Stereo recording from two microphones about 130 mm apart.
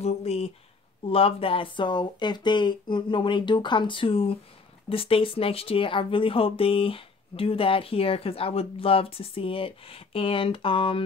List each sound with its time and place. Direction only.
0.0 s speech: 55° left (ahead or behind)